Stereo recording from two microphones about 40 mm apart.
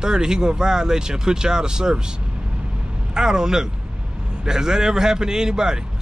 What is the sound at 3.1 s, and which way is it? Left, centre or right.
Speech, centre.